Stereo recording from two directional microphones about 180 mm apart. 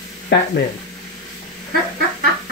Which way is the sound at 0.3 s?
75° left (ahead or behind).